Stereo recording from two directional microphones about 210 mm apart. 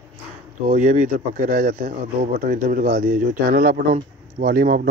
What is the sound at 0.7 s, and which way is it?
Speech, 35° right (ahead or behind).